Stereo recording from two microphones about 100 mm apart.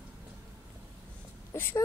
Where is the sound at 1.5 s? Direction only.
25° left (ahead or behind).